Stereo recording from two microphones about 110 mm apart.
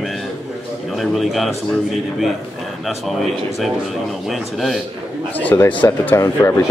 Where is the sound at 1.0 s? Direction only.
Centre (ahead or behind).